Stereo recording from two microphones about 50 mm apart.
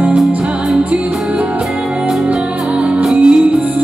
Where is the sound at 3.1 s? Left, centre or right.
Centre.